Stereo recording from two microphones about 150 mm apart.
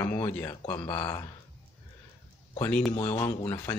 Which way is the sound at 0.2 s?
15° left (ahead or behind).